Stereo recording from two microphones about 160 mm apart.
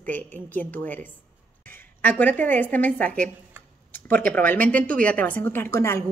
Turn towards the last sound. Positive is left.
turn(degrees=15)  # may be behind; listen again after turning